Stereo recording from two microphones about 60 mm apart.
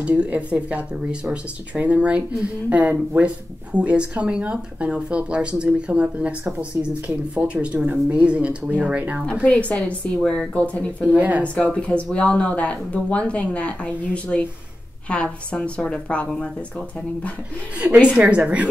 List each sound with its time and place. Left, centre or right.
0.0 s speech: right
9.2 s speech: centre
11.1 s speech: right
11.4 s speech: centre
18.2 s speech: right